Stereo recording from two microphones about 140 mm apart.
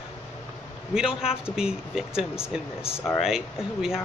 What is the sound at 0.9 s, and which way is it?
A man's voice, 5° right (ahead or behind).